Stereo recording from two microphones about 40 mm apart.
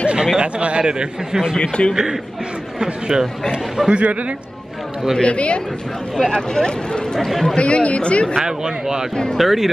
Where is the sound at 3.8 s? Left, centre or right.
Right.